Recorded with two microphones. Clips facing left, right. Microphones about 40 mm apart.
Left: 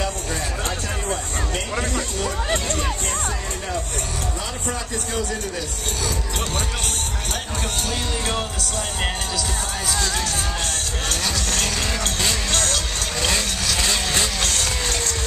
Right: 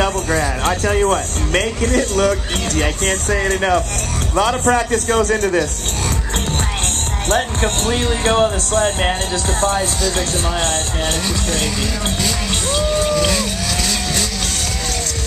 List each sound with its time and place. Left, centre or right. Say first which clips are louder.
0.8 s speech: right 11 dB; right
4.4 s a man's voice: right 13 dB; right
7.2 s speech: right 13 dB; right
12.5 s music: right 6 dB; centre
13.8 s vehicle: right 1 dB; centre